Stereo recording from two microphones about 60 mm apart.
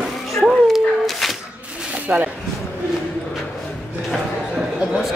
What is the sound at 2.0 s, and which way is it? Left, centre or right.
Speech, right.